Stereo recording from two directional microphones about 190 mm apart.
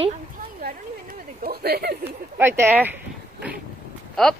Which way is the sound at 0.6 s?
50° right (ahead or behind).